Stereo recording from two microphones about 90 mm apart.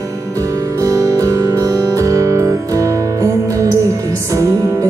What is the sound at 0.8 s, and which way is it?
Music, 40° right (ahead or behind).